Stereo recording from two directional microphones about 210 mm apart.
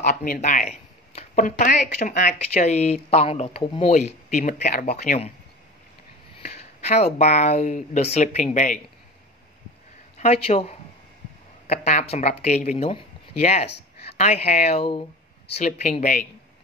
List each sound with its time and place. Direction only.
0.0 s speech: 40° left (ahead or behind)
6.4 s speech: 30° left (ahead or behind)
10.1 s speech: 30° left (ahead or behind)